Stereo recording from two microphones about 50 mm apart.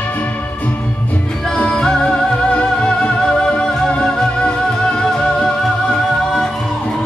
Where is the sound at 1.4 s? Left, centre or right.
Centre.